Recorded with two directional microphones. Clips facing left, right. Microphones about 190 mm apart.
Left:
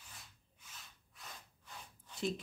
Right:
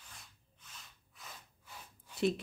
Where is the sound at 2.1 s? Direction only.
65° right (ahead or behind).